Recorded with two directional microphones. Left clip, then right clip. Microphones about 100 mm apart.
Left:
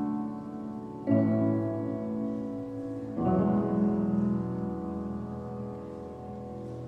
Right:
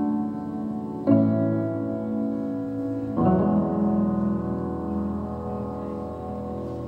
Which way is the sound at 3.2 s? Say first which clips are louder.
Right 6 dB; 20° left (ahead or behind).